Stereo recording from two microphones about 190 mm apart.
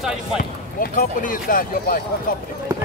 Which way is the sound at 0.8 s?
45° left (ahead or behind).